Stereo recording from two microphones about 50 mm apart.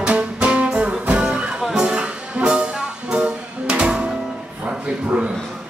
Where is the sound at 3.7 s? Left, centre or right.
Right.